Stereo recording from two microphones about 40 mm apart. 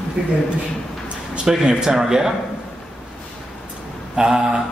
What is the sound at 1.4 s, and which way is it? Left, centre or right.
Speech, centre.